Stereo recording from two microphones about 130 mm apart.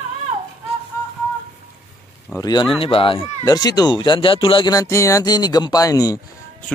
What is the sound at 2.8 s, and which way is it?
Speech, 45° left (ahead or behind).